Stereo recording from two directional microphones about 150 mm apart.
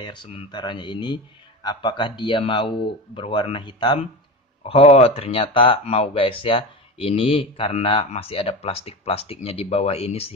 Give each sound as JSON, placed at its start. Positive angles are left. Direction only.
{"t": 0.0, "sound": "speech", "side_deg": 30}